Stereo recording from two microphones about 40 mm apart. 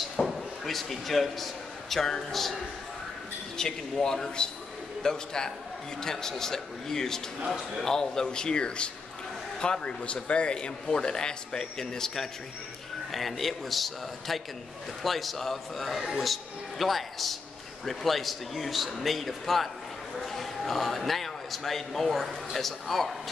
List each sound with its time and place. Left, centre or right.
0.3 s a man's voice: centre
3.6 s a man's voice: centre
7.3 s speech: centre
7.8 s a man's voice: centre
13.1 s a man's voice: centre